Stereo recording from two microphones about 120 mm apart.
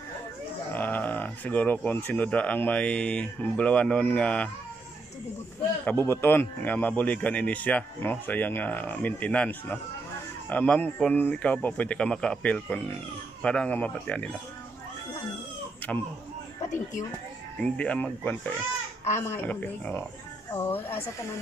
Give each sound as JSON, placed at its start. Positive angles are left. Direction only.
{"t": 0.7, "sound": "speech", "side_deg": 15}
{"t": 5.9, "sound": "speech", "side_deg": 20}
{"t": 17.6, "sound": "speech", "side_deg": 10}